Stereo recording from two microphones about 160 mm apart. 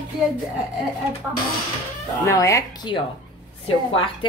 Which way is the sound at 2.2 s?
20° left (ahead or behind).